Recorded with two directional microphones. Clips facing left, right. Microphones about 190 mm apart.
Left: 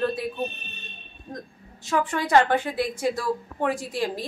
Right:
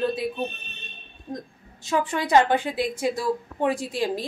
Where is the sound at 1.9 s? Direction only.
20° right (ahead or behind).